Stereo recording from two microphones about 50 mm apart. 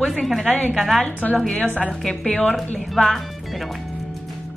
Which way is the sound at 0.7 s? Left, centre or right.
Centre.